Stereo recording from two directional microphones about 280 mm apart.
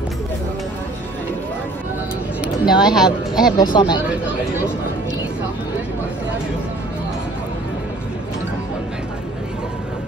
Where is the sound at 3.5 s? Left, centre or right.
Centre.